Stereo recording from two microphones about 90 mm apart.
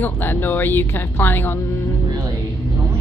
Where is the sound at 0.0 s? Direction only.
25° left (ahead or behind).